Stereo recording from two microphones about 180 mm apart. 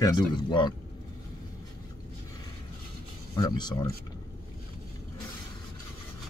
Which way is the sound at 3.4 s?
25° left (ahead or behind).